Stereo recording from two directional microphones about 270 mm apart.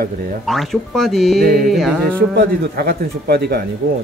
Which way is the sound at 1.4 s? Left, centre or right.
Right.